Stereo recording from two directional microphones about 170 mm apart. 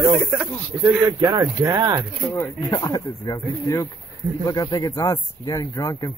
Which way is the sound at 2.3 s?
20° left (ahead or behind).